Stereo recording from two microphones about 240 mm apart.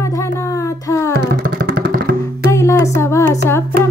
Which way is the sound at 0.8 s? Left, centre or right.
Centre.